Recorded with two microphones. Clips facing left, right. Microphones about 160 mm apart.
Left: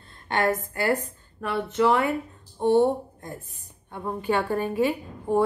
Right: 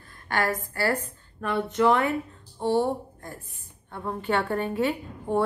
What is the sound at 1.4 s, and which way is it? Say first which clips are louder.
Speech: even; 5° left (ahead or behind).